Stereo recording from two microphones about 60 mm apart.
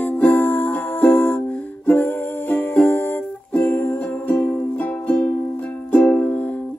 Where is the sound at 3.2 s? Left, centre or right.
Left.